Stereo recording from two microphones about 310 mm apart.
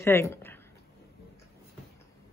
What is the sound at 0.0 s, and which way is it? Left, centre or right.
Speech, centre.